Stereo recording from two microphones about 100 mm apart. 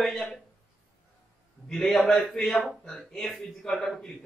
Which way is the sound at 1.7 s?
Centre (ahead or behind).